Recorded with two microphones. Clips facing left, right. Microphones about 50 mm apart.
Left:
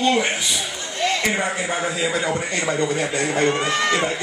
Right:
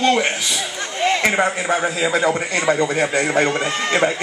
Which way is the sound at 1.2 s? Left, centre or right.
Right.